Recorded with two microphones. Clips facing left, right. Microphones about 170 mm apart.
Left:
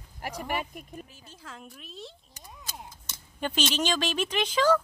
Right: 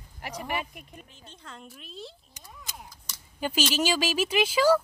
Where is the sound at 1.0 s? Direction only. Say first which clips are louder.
Left 1 dB; 5° left (ahead or behind).